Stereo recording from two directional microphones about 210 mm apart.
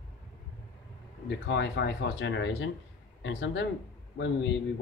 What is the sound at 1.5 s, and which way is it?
Speech, 55° left (ahead or behind).